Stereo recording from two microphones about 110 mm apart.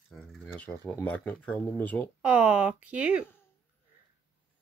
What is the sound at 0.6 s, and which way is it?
Speech, 20° left (ahead or behind).